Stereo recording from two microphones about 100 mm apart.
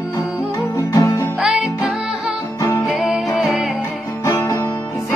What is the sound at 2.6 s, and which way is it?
Music, 35° left (ahead or behind).